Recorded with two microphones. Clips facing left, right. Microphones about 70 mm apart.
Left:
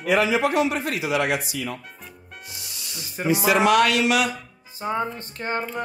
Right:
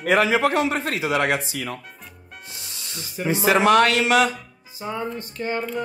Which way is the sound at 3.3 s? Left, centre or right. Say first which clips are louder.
Right 1 dB; right.